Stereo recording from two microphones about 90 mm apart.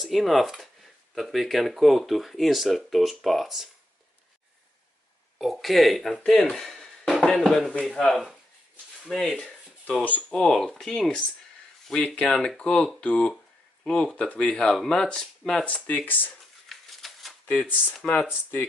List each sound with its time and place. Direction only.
0.0 s speech: centre (ahead or behind)
5.4 s speech: centre (ahead or behind)
10.0 s speech: 15° left (ahead or behind)
16.6 s a sound: centre (ahead or behind)
17.5 s speech: 15° left (ahead or behind)